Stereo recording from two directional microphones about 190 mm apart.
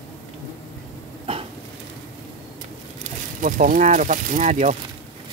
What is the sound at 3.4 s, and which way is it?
Speech, 45° right (ahead or behind).